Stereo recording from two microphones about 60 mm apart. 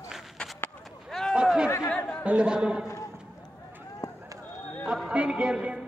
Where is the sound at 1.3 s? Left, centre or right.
Centre.